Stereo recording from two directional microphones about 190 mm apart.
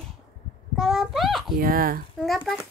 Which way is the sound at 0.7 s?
Centre (ahead or behind).